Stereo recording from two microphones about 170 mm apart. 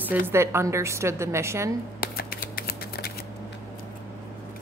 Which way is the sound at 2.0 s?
60° left (ahead or behind).